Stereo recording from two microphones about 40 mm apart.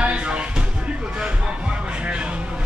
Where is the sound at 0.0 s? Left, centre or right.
Right.